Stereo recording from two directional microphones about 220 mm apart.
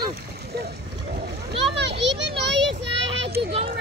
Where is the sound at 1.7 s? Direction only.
50° right (ahead or behind).